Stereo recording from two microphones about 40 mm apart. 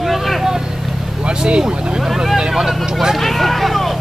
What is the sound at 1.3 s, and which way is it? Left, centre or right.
Vehicle, right.